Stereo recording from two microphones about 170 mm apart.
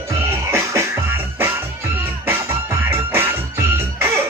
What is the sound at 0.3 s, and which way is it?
Music, 15° right (ahead or behind).